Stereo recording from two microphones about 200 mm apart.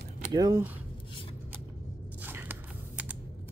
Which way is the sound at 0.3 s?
15° right (ahead or behind).